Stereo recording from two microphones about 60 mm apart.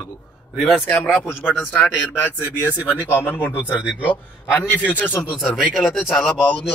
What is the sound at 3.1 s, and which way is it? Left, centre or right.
Speech, left.